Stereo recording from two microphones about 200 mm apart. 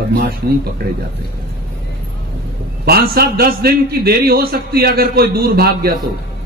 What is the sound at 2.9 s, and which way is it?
A man's voice, 50° right (ahead or behind).